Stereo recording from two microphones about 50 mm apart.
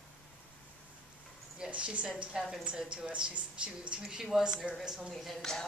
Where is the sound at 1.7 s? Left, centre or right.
Right.